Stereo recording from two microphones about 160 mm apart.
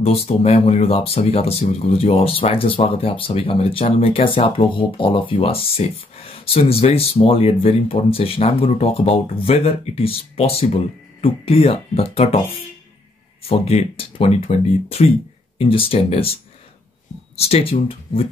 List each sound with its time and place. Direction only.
0.0 s speech: 40° left (ahead or behind)
13.5 s speech: 40° left (ahead or behind)
17.4 s speech: 40° left (ahead or behind)